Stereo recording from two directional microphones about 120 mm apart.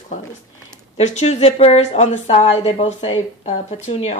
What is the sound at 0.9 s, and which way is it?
A woman's voice, 65° left (ahead or behind).